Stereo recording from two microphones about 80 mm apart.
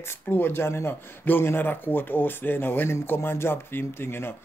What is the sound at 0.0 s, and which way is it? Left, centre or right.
Speech, left.